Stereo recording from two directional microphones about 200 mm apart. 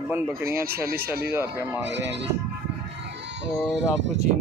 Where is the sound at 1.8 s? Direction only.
60° right (ahead or behind).